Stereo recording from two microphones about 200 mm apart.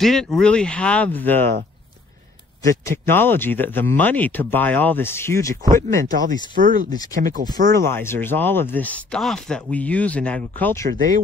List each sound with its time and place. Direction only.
0.0 s speech: centre (ahead or behind)
2.6 s speech: 15° left (ahead or behind)
6.5 s speech: 40° right (ahead or behind)
6.9 s speech: 20° left (ahead or behind)
7.2 s speech: 40° right (ahead or behind)
7.7 s speech: 10° left (ahead or behind)